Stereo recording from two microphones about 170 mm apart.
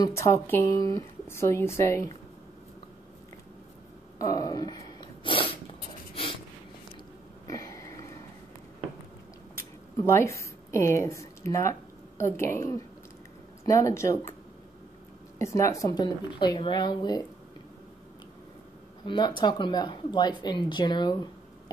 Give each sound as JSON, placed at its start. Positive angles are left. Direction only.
{"t": 0.0, "sound": "speech", "side_deg": 20}
{"t": 4.2, "sound": "speech", "side_deg": 20}
{"t": 7.4, "sound": "a sound", "side_deg": 20}
{"t": 9.6, "sound": "a woman's voice", "side_deg": 15}
{"t": 15.3, "sound": "speech", "side_deg": 15}
{"t": 19.0, "sound": "speech", "side_deg": 30}